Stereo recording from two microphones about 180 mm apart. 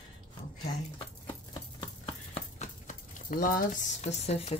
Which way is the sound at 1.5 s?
30° left (ahead or behind).